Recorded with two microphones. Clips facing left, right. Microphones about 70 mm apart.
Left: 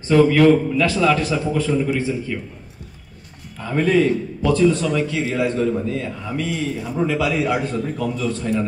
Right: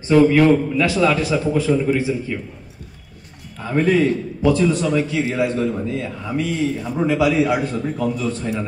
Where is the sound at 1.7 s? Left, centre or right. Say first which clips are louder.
Right 2 dB; centre.